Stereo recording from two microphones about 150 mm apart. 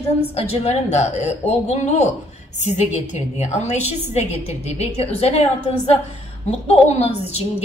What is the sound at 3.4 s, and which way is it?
A woman's voice, 45° left (ahead or behind).